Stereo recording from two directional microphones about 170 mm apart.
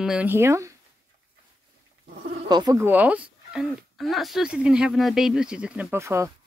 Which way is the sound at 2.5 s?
25° right (ahead or behind).